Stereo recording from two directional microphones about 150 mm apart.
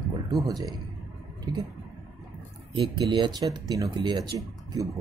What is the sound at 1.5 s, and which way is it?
Speech, 30° right (ahead or behind).